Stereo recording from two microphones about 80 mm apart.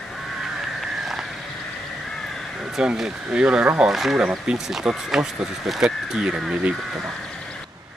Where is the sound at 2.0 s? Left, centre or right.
Centre.